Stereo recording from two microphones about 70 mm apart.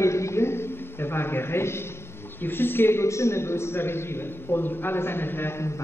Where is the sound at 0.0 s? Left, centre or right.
Left.